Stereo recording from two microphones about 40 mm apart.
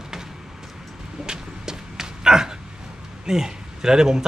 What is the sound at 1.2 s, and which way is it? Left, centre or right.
Dog, centre.